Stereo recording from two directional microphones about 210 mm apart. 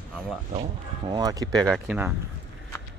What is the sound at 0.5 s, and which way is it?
Speech, 25° right (ahead or behind).